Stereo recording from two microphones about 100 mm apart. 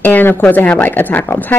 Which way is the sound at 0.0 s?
20° left (ahead or behind).